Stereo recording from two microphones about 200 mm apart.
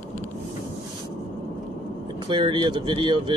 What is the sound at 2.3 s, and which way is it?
Speech, 25° right (ahead or behind).